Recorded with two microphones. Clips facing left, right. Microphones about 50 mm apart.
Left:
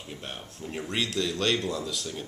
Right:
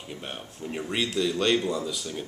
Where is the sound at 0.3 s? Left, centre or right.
Centre.